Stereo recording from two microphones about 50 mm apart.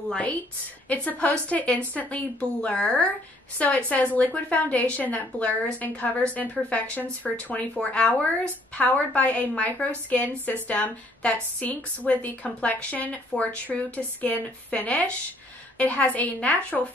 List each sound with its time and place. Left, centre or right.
0.8 s speech: left
13.3 s speech: left
13.9 s speech: left